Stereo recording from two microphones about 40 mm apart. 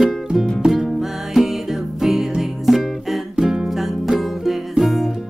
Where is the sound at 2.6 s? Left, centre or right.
Centre.